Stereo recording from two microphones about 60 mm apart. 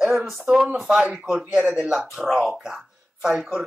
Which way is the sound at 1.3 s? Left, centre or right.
Right.